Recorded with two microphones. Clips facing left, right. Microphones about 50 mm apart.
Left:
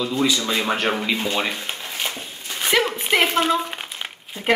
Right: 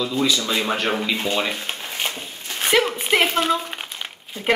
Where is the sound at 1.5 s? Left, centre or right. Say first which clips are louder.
Right 1 dB; centre.